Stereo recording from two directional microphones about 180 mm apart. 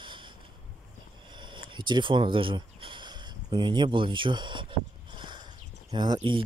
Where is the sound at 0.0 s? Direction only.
25° right (ahead or behind).